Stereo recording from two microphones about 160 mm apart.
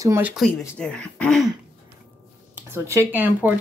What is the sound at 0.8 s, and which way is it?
Speech, 5° left (ahead or behind).